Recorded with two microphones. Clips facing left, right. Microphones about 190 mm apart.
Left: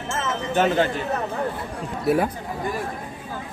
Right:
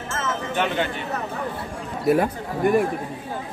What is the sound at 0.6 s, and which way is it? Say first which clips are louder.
Speech: left 5 dB; 40° left (ahead or behind).